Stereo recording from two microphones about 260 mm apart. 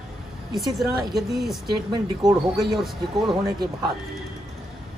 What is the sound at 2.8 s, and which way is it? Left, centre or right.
Speech, centre.